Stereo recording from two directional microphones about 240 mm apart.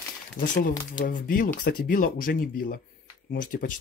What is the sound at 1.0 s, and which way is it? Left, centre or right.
Speech, left.